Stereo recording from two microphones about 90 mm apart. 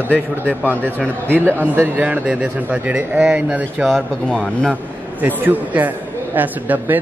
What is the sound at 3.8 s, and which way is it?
Speech, 5° left (ahead or behind).